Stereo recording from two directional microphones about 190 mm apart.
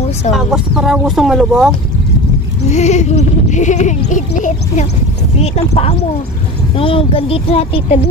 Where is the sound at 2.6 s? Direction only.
35° left (ahead or behind).